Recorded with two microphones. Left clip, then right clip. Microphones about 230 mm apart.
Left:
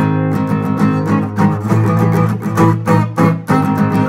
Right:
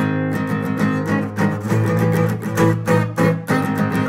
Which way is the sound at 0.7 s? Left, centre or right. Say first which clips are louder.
Left 4 dB; left.